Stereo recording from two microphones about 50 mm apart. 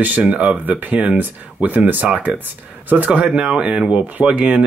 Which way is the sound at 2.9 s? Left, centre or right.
Right.